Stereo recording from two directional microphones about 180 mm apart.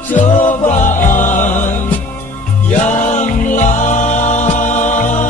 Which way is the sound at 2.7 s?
40° left (ahead or behind).